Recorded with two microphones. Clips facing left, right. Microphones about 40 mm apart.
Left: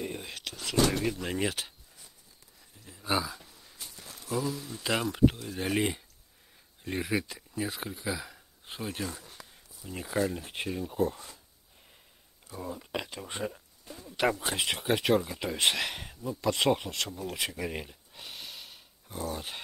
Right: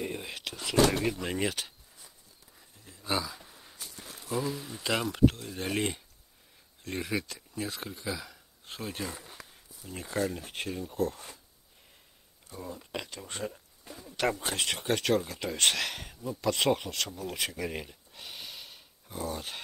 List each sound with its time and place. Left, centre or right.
0.0 s whispering: centre
0.7 s speech: right
1.0 s speech: centre
2.8 s a sound: centre
3.3 s a sound: centre
4.4 s speech: centre
4.8 s speech: centre
9.0 s a sound: centre
9.8 s speech: centre
12.5 s speech: centre